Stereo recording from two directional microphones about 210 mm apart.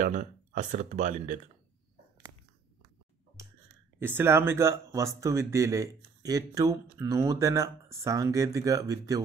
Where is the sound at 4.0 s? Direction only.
10° right (ahead or behind).